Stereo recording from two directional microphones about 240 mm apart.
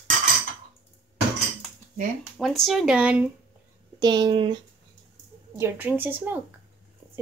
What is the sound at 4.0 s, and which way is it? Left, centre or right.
Speech, centre.